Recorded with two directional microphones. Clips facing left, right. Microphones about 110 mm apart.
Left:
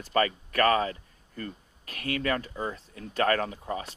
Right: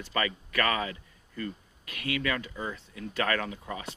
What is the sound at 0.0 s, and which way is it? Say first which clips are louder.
Speech: left 5 dB; 40° left (ahead or behind).